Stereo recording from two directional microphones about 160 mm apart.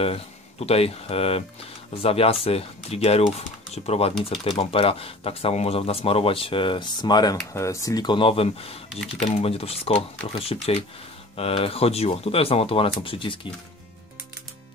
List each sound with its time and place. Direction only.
0.0 s speech: 40° left (ahead or behind)